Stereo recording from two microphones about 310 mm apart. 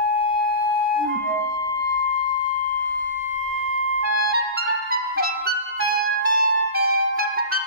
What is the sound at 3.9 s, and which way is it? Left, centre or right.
Music, right.